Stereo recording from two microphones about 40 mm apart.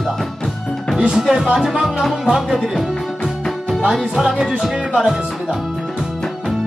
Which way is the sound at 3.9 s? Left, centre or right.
Centre.